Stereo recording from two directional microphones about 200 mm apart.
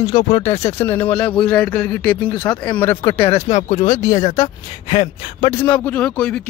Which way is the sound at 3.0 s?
25° left (ahead or behind).